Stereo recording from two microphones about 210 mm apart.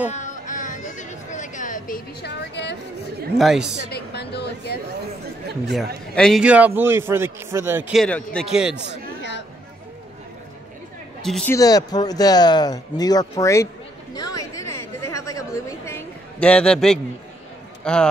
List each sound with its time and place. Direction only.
0.1 s a sound: 35° left (ahead or behind); by 2.8 s 55° left (ahead or behind)
3.3 s speech: centre (ahead or behind)
3.9 s a woman's voice: 50° left (ahead or behind)
6.1 s a man's voice: centre (ahead or behind)
11.2 s speech: centre (ahead or behind)
11.5 s speech: 15° left (ahead or behind)
14.1 s a sound: 15° left (ahead or behind)
17.8 s speech: 5° left (ahead or behind)